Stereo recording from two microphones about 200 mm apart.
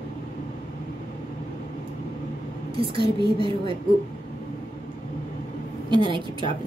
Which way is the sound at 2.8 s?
25° right (ahead or behind).